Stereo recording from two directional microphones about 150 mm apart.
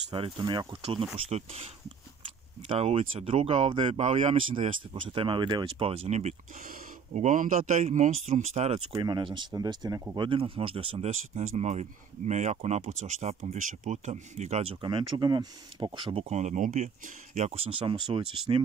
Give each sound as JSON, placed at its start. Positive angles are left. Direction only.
{"t": 0.1, "sound": "speech", "side_deg": -35}
{"t": 2.7, "sound": "speech", "side_deg": -45}
{"t": 4.0, "sound": "speech", "side_deg": -50}
{"t": 7.2, "sound": "speech", "side_deg": -60}
{"t": 9.0, "sound": "speech", "side_deg": -30}
{"t": 10.2, "sound": "speech", "side_deg": -35}
{"t": 16.3, "sound": "speech", "side_deg": -50}
{"t": 17.5, "sound": "speech", "side_deg": -40}